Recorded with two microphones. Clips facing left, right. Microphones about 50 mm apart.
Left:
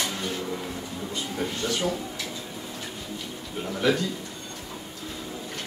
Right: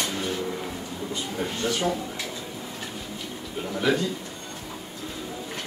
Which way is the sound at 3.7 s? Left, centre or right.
Centre.